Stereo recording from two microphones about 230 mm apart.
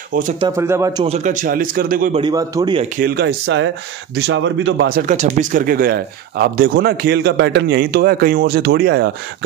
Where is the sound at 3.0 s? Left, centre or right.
Right.